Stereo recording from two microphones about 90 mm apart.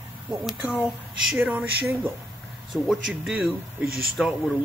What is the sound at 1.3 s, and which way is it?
Speech, 20° right (ahead or behind).